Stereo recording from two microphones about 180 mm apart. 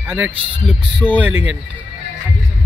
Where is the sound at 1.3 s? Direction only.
90° right.